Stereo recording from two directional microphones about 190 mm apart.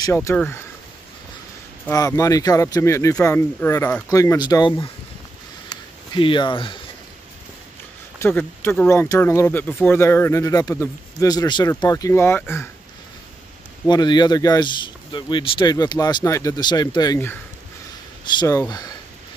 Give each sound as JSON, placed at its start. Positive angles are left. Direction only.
{"t": 0.0, "sound": "speech", "side_deg": 15}
{"t": 1.9, "sound": "speech", "side_deg": 15}
{"t": 5.7, "sound": "a sound", "side_deg": 25}
{"t": 8.2, "sound": "speech", "side_deg": 10}
{"t": 13.8, "sound": "speech", "side_deg": 20}
{"t": 18.4, "sound": "speech", "side_deg": 20}